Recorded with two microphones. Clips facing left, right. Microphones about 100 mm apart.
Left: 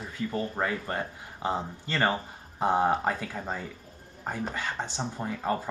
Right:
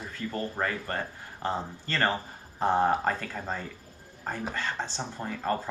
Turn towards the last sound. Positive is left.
turn(degrees=10)  # may be behind; listen again after turning